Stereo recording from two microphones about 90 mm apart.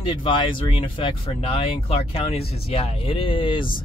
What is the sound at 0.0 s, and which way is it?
Speech, 70° left (ahead or behind).